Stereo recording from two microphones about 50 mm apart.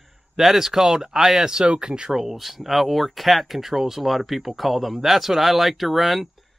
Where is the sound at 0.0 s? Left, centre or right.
Centre.